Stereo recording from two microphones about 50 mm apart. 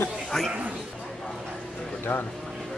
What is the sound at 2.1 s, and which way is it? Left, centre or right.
Speech, left.